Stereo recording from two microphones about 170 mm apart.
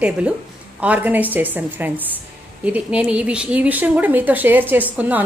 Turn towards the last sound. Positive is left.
turn(degrees=-10)  # may be behind; listen again after turning